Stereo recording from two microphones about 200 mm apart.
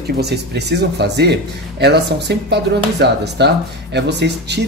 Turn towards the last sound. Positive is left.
turn(degrees=-60)  # may be behind; listen again after turning